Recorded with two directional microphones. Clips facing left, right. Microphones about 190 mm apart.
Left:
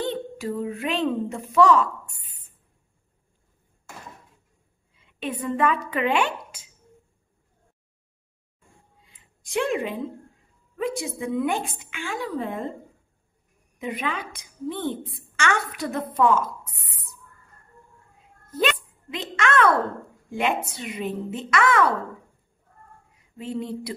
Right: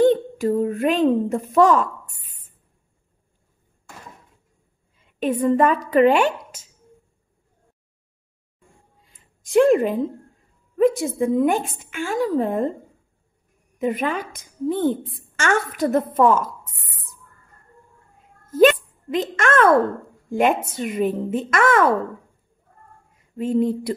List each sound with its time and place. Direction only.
0.0 s speech: 45° right (ahead or behind)
5.0 s a woman's voice: 45° right (ahead or behind)
9.0 s a sound: 45° right (ahead or behind)
10.8 s a woman's voice: 45° right (ahead or behind)
13.7 s a woman's voice: 45° right (ahead or behind)
18.5 s a woman's voice: 45° right (ahead or behind)
23.3 s a woman's voice: 50° right (ahead or behind)